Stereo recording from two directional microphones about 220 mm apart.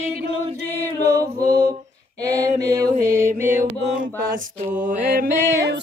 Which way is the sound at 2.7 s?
15° right (ahead or behind).